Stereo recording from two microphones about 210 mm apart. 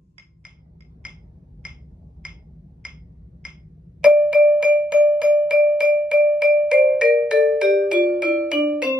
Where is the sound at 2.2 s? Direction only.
5° right (ahead or behind).